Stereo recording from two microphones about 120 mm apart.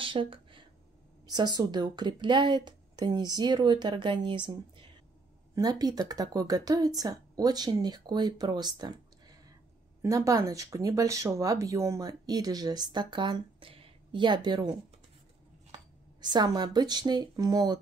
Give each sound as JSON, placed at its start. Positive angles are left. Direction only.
{"t": 0.0, "sound": "a sound", "side_deg": -45}
{"t": 1.2, "sound": "speech", "side_deg": -35}
{"t": 5.5, "sound": "speech", "side_deg": -30}